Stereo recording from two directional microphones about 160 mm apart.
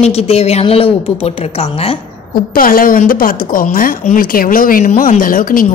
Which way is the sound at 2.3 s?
65° left (ahead or behind).